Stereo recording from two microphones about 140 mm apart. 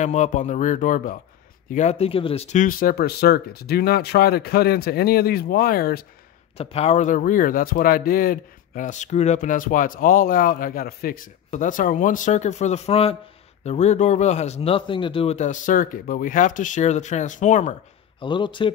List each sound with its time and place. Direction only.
0.0 s speech: 60° left (ahead or behind)
1.7 s a man's voice: 55° left (ahead or behind)
2.5 s speech: 75° left (ahead or behind); by 6.0 s 90° left
6.5 s a man's voice: 45° left (ahead or behind)
15.3 s speech: 60° left (ahead or behind)
18.2 s speech: 35° left (ahead or behind)